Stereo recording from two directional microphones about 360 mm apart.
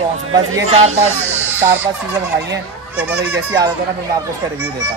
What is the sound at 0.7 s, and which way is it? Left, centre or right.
Speech, centre.